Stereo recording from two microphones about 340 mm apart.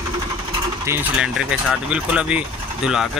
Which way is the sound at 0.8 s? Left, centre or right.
Centre.